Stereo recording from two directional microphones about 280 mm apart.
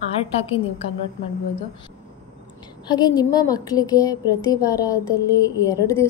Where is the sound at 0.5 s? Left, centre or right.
Left.